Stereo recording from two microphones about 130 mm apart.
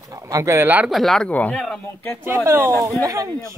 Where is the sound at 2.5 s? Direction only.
25° right (ahead or behind).